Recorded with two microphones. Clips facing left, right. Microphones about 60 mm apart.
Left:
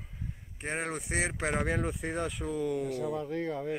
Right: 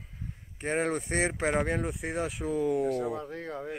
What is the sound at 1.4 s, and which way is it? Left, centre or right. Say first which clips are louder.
Speech: right 3 dB; centre.